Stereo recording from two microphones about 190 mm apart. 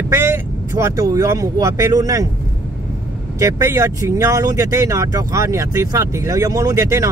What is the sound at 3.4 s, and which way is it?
Speech, 15° right (ahead or behind).